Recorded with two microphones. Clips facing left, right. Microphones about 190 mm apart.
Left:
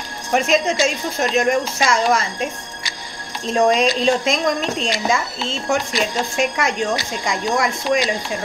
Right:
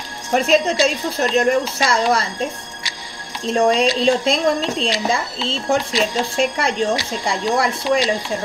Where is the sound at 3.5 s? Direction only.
30° right (ahead or behind).